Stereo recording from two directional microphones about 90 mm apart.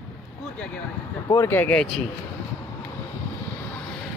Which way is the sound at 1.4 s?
25° left (ahead or behind).